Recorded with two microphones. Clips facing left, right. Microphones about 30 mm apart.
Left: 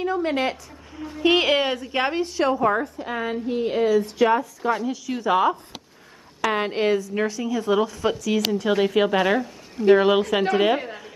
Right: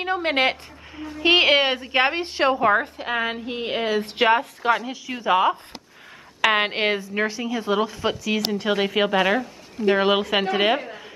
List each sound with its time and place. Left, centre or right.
0.0 s a woman's voice: right
1.2 s a woman's voice: right
2.7 s a woman's voice: right
5.0 s a woman's voice: right
6.4 s a woman's voice: right
7.0 s a woman's voice: right
9.1 s speech: centre
9.8 s a woman's voice: centre